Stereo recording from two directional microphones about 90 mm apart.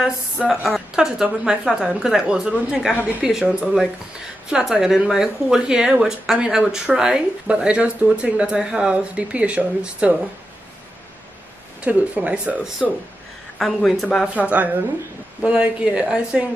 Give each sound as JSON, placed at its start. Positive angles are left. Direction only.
{"t": 0.0, "sound": "a woman's voice", "side_deg": -5}
{"t": 11.8, "sound": "speech", "side_deg": -15}
{"t": 12.8, "sound": "a woman's voice", "side_deg": -5}
{"t": 14.3, "sound": "speech", "side_deg": -15}